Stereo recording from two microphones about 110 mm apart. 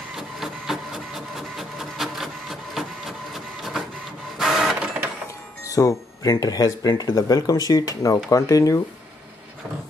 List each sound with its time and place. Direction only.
0.1 s printer: 5° right (ahead or behind)
5.6 s speech: 30° left (ahead or behind)